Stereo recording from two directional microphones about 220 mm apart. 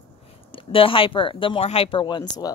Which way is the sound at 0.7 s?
25° left (ahead or behind).